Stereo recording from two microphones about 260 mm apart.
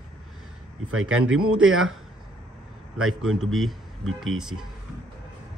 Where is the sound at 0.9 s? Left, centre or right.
Right.